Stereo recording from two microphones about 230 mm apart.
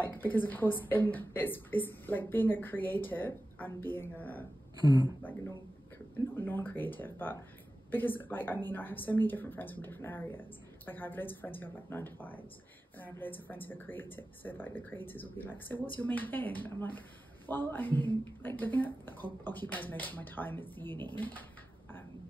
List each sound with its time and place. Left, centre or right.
0.0 s a woman's voice: centre
4.7 s speech: centre
6.1 s a woman's voice: centre